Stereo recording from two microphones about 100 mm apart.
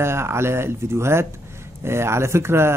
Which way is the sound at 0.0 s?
25° right (ahead or behind).